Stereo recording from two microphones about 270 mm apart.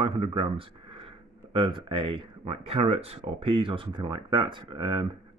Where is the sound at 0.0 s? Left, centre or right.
Centre.